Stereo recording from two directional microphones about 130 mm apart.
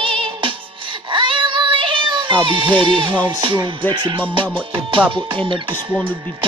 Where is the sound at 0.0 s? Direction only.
40° right (ahead or behind).